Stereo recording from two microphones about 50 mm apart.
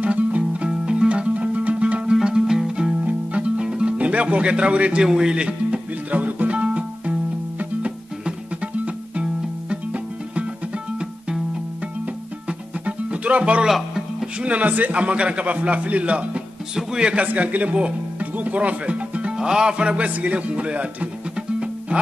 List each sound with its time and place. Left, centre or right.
0.0 s music: right
4.0 s a man's voice: right
5.0 s music: centre
12.4 s music: right
13.7 s music: centre
14.4 s a man's voice: right
17.3 s speech: right
19.3 s speech: centre